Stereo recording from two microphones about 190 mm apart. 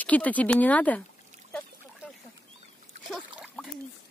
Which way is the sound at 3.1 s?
Centre (ahead or behind).